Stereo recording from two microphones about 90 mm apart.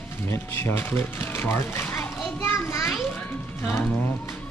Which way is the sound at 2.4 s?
30° left (ahead or behind).